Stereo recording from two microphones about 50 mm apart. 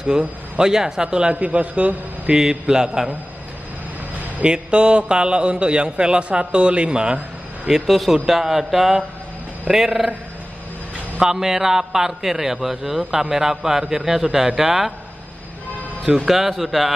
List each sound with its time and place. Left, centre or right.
0.6 s a man's voice: centre
2.3 s a man's voice: centre
4.4 s a man's voice: right
7.6 s a man's voice: centre
11.1 s a man's voice: centre
16.3 s a man's voice: centre